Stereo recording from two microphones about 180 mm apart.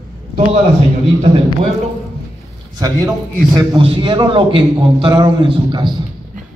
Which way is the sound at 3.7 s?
30° right (ahead or behind).